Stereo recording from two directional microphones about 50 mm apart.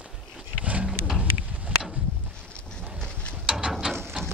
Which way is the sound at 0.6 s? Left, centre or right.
Right.